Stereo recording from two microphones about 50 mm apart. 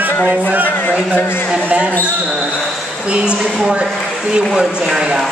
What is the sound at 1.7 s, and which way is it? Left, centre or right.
Speech, right.